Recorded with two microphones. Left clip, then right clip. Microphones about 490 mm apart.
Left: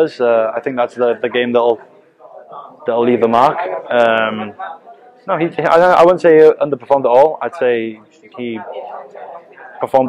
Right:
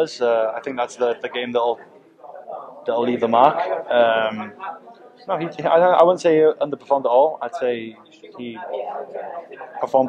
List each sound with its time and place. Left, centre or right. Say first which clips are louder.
0.0 s speech: left 6 dB; left
2.8 s speech: left 7 dB; left
9.8 s a man's voice: left 5 dB; left